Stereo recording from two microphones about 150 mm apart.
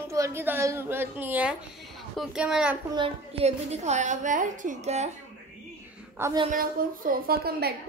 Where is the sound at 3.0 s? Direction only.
45° right (ahead or behind).